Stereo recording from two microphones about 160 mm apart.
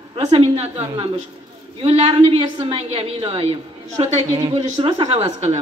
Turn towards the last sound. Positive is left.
turn(degrees=-40)  # may be behind; listen again after turning